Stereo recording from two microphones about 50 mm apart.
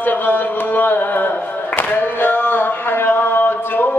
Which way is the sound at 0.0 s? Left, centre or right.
Left.